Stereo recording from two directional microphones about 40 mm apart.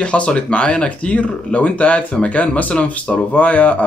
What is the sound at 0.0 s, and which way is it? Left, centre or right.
Speech, left.